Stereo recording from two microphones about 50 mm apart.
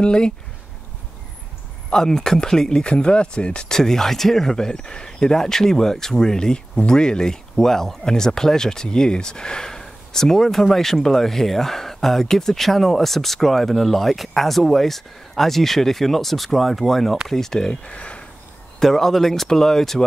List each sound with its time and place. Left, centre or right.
0.0 s speech: centre
1.9 s speech: centre
18.8 s speech: centre